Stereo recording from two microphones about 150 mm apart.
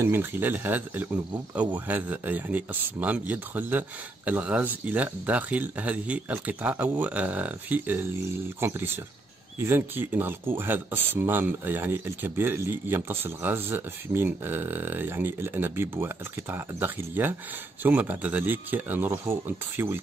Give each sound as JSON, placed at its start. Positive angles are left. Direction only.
{"t": 0.0, "sound": "speech", "side_deg": -15}